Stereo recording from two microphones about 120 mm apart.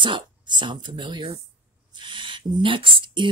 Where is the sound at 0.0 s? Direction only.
40° right (ahead or behind).